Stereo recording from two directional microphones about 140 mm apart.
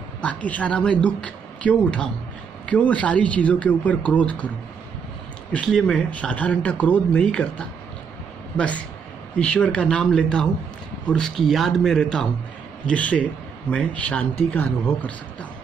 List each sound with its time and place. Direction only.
0.2 s speech: 10° left (ahead or behind)
5.5 s a man's voice: 5° left (ahead or behind)